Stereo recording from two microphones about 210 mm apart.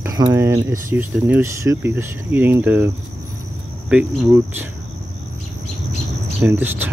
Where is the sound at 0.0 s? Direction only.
15° right (ahead or behind).